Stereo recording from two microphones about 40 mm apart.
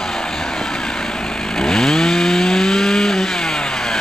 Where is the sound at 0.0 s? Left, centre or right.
Centre.